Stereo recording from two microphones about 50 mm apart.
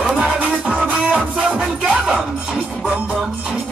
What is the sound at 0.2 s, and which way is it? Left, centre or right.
Music, centre.